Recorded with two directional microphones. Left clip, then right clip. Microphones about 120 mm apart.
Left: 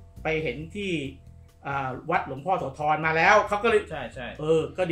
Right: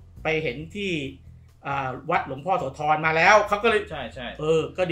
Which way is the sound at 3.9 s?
15° left (ahead or behind).